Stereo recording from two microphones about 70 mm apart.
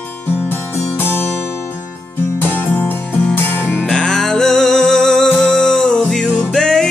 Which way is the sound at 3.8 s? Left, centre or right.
Centre.